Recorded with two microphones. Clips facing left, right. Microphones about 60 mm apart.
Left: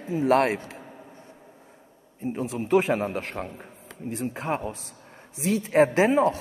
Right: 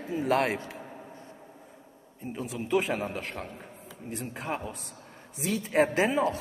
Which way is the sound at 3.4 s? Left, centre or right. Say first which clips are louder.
Left 3 dB; centre.